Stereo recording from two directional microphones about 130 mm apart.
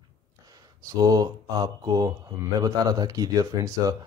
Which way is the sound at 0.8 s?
30° right (ahead or behind).